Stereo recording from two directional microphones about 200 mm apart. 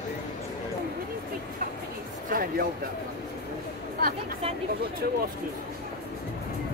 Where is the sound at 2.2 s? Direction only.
45° right (ahead or behind).